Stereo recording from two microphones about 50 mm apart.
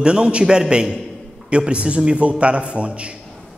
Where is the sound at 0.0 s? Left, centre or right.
Centre.